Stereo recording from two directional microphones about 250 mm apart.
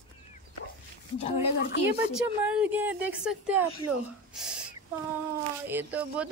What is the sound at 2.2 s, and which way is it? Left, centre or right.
Speech, centre.